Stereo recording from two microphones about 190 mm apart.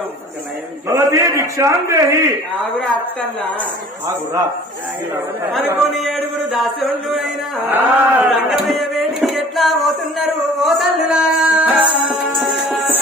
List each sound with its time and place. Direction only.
0.8 s a man's voice: 15° right (ahead or behind)
2.8 s a woman's voice: 5° left (ahead or behind)
5.9 s music: centre (ahead or behind)
7.6 s a sound: 10° right (ahead or behind)